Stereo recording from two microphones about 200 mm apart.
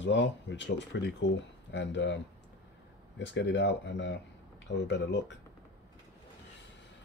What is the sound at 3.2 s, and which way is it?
Speech, 60° left (ahead or behind).